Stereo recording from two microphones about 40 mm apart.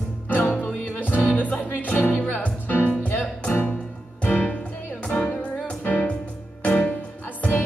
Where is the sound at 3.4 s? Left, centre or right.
Left.